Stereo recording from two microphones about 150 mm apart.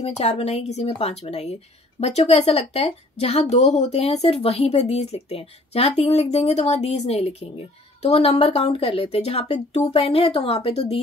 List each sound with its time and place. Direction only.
0.0 s speech: 45° left (ahead or behind)